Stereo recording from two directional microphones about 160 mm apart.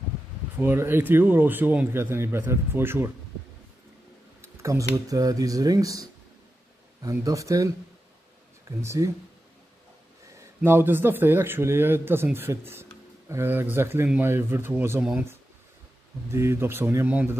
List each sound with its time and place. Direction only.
0.6 s a man's voice: 15° right (ahead or behind)
4.4 s speech: 20° right (ahead or behind)
10.3 s a man's voice: 15° right (ahead or behind)
16.3 s a man's voice: 15° right (ahead or behind)